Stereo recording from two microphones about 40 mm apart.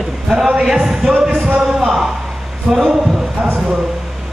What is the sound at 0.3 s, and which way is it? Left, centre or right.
Speech, centre.